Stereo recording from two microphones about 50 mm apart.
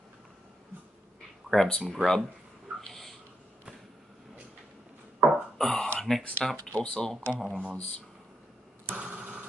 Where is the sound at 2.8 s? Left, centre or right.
Centre.